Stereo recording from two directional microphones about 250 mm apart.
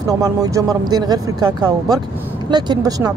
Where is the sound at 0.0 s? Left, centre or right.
Centre.